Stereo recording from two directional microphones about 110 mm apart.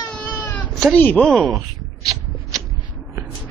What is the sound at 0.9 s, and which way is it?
Speech, 15° left (ahead or behind).